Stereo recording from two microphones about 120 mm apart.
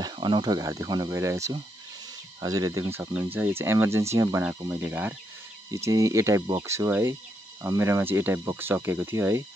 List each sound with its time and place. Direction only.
0.0 s speech: 35° right (ahead or behind); by 5.1 s 15° right (ahead or behind)
5.7 s speech: 25° right (ahead or behind)